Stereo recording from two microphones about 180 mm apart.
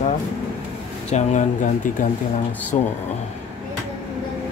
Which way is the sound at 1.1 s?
40° left (ahead or behind).